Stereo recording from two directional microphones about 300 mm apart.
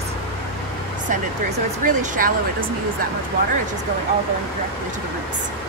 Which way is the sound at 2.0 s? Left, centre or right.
Right.